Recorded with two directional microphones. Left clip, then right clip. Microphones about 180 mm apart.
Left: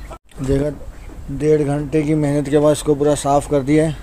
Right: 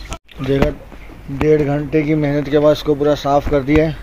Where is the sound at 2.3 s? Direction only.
25° left (ahead or behind).